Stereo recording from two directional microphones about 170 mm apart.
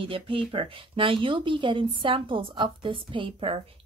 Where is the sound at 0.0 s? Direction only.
30° right (ahead or behind).